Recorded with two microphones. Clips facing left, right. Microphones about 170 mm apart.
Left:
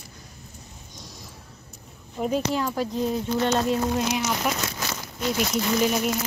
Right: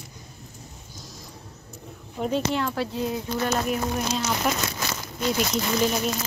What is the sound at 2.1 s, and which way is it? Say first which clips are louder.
Speech: even; 10° left (ahead or behind).